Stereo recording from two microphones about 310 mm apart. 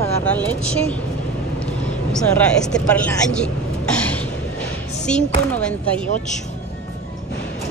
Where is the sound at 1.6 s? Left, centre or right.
Centre.